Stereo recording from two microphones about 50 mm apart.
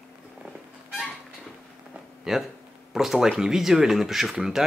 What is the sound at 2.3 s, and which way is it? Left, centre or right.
Speech, centre.